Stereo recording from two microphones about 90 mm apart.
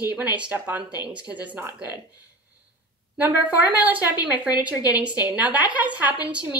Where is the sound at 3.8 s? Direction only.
15° right (ahead or behind).